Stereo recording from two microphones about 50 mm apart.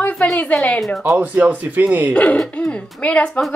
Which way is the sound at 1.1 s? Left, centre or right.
Right.